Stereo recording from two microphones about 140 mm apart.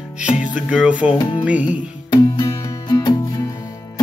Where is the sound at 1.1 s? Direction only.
35° left (ahead or behind).